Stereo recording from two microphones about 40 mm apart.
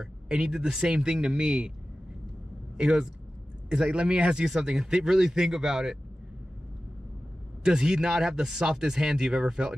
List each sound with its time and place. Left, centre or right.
0.0 s speech: centre
2.8 s speech: right
7.6 s speech: centre